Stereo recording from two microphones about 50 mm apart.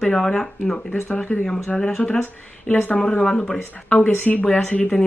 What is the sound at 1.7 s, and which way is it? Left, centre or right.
Speech, centre.